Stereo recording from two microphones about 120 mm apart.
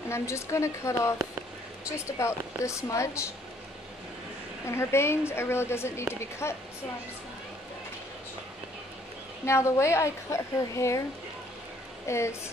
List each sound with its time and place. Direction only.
0.1 s a woman's voice: 25° left (ahead or behind)
4.6 s a woman's voice: 20° left (ahead or behind)
9.5 s a woman's voice: 25° left (ahead or behind)
12.1 s a woman's voice: 25° left (ahead or behind)